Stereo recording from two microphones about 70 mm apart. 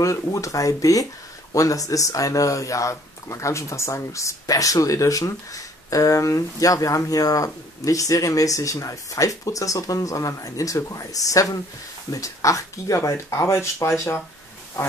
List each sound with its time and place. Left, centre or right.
0.0 s speech: left